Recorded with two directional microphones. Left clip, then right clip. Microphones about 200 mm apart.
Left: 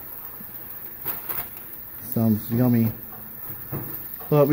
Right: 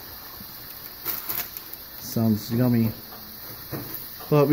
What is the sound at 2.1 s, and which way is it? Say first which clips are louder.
Speech: left 1 dB; centre (ahead or behind).